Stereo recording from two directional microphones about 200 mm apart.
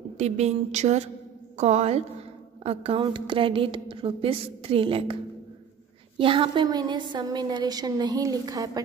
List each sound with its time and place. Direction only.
0.2 s a woman's voice: 35° right (ahead or behind)
6.1 s a woman's voice: 25° right (ahead or behind)